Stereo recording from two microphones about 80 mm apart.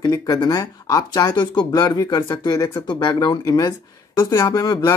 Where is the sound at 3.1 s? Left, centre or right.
Left.